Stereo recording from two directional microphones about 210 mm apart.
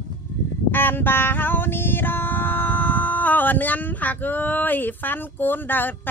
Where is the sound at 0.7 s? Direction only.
10° left (ahead or behind).